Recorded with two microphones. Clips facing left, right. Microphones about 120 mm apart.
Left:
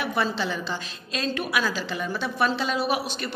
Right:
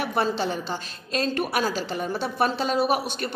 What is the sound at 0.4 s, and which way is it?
A woman's voice, 45° right (ahead or behind).